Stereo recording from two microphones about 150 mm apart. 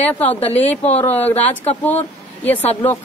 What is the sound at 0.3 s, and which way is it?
Speech, 45° left (ahead or behind).